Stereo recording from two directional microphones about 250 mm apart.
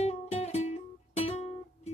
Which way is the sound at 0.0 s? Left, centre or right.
Left.